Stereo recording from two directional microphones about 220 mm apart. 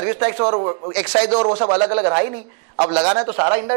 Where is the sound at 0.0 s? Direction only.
10° right (ahead or behind).